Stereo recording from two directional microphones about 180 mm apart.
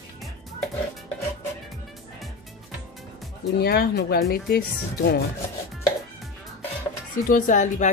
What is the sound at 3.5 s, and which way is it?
Speech, 60° left (ahead or behind).